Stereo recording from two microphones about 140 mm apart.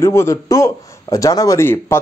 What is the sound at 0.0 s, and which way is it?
Speech, 20° left (ahead or behind).